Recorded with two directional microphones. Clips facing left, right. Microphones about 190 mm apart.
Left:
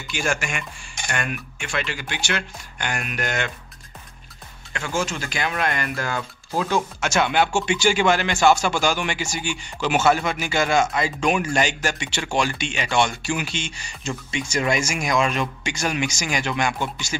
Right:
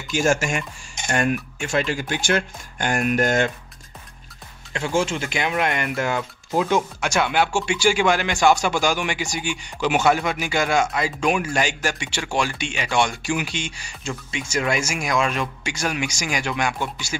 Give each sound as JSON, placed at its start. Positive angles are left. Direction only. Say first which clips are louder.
{"t": 0.1, "sound": "speech", "louder": "right 6 dB", "side_deg": -40}
{"t": 4.7, "sound": "speech", "louder": "right 4 dB", "side_deg": -25}